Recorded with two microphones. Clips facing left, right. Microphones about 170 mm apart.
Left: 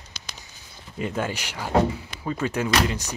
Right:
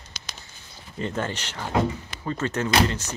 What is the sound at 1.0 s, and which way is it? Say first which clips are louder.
Speech: left 1 dB; 10° left (ahead or behind).